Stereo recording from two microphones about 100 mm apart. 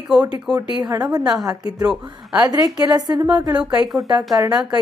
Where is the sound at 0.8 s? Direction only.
40° right (ahead or behind).